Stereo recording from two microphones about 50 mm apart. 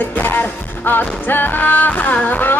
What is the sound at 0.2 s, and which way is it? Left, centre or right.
Music, left.